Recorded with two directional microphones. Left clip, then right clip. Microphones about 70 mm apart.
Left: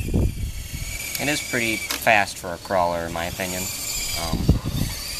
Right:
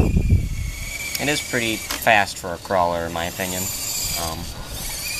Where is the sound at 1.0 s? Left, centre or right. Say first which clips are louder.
Right 2 dB; centre.